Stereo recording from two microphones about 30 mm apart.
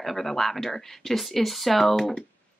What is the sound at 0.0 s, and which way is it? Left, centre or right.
Speech, centre.